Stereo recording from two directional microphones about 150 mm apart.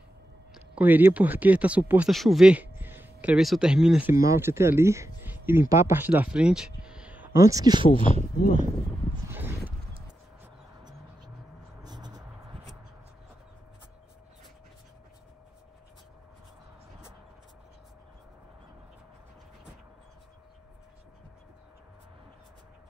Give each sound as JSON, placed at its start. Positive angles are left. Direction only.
{"t": 0.6, "sound": "speech", "side_deg": -10}
{"t": 4.1, "sound": "speech", "side_deg": -20}
{"t": 7.3, "sound": "speech", "side_deg": -20}
{"t": 8.1, "sound": "speech", "side_deg": 55}
{"t": 10.8, "sound": "a sound", "side_deg": -25}
{"t": 11.8, "sound": "vehicle", "side_deg": -25}